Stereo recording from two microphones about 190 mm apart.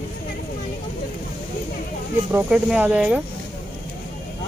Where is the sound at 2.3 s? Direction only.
5° right (ahead or behind).